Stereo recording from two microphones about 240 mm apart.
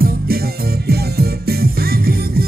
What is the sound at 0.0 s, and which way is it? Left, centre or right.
Music, right.